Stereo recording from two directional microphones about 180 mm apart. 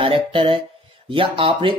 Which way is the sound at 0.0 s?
30° right (ahead or behind).